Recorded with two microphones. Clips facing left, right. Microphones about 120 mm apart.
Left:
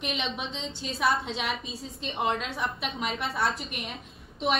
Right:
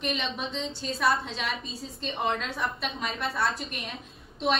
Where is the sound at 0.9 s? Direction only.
25° left (ahead or behind).